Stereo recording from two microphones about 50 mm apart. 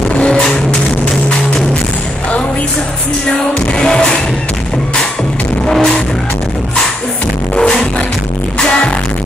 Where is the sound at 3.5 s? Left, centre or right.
Centre.